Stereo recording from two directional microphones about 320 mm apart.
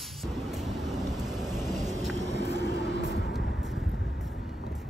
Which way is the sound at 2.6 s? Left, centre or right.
Left.